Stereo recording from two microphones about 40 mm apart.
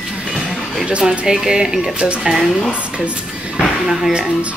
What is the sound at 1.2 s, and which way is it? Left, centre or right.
A woman's voice, centre.